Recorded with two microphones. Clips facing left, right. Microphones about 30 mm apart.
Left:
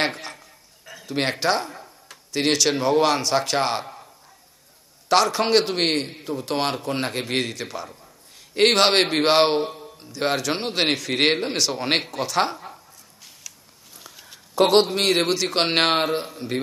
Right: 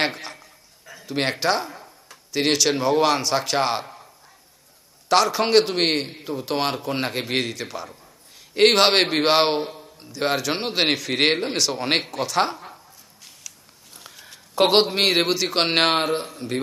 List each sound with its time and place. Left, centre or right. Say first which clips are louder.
0.0 s a man's voice: even; centre
5.0 s a man's voice: even; centre
14.5 s a sound: left 1 dB; right
14.9 s a man's voice: right 1 dB; centre